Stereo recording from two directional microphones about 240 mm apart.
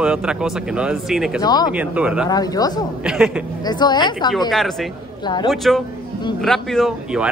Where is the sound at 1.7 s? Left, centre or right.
Centre.